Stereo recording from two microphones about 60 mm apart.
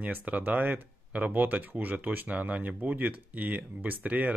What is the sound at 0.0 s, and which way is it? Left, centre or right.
Speech, right.